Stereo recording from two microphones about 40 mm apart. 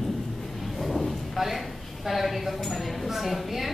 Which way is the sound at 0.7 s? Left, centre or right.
Centre.